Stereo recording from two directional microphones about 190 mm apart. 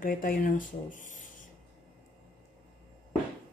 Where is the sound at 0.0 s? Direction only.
50° left (ahead or behind).